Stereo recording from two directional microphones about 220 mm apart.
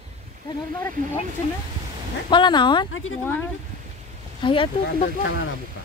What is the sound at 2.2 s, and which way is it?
Speech, 20° left (ahead or behind).